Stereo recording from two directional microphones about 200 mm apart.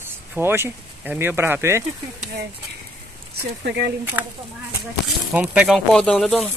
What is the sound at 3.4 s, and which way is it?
Speech, 55° right (ahead or behind).